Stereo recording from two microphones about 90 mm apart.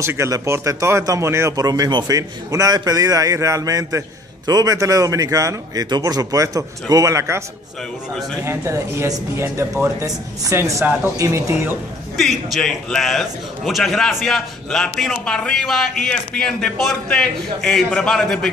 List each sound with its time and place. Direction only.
0.0 s a man's voice: 30° right (ahead or behind)
1.6 s a man's voice: 45° right (ahead or behind)
8.5 s a man's voice: 30° right (ahead or behind)
12.2 s a man's voice: centre (ahead or behind)